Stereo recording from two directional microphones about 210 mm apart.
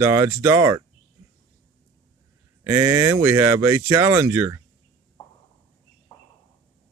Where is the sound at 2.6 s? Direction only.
10° right (ahead or behind).